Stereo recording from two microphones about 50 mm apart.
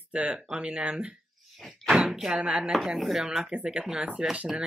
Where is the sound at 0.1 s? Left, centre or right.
Right.